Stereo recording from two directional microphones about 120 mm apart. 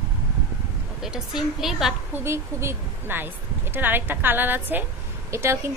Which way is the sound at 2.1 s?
20° right (ahead or behind).